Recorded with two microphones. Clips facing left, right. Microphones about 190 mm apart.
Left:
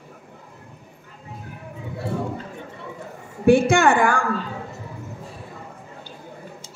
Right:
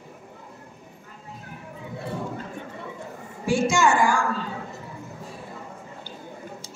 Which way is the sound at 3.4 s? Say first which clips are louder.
Left 6 dB; 60° left (ahead or behind).